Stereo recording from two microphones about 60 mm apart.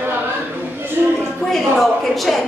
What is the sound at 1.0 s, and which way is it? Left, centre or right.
Speech, right.